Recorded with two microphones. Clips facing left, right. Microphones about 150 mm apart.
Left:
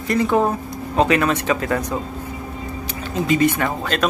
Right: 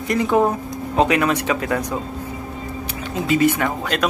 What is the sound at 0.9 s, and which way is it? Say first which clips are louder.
Speech: even; 10° right (ahead or behind).